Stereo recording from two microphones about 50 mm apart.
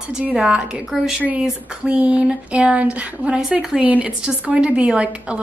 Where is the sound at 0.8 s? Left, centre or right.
Centre.